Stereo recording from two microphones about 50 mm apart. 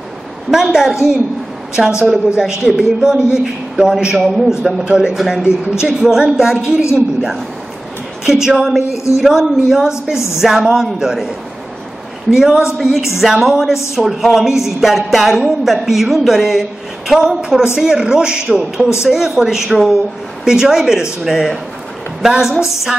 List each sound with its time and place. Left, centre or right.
0.5 s a woman's voice: centre
4.8 s a man's voice: centre
5.9 s a man's voice: centre
8.8 s speech: left
9.2 s a man's voice: centre
12.3 s a man's voice: centre
12.6 s a woman's voice: centre